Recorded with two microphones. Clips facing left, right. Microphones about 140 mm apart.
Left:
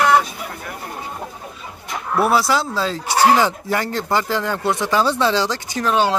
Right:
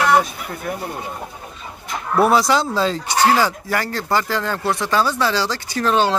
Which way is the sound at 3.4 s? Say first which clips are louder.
Left 1 dB; 20° left (ahead or behind).